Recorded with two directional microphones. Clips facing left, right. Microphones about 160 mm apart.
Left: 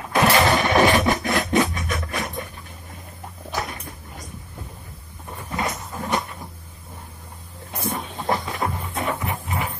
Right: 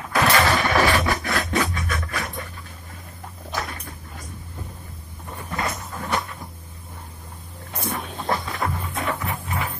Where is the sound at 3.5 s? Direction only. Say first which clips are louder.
Left 1 dB; 15° left (ahead or behind).